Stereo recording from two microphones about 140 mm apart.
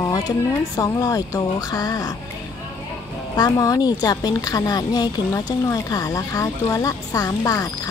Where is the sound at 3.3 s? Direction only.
25° left (ahead or behind).